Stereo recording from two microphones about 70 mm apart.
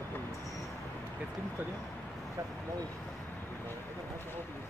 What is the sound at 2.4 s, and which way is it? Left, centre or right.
Speech, right.